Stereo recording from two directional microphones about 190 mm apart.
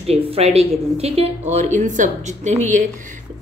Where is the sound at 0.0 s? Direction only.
35° right (ahead or behind).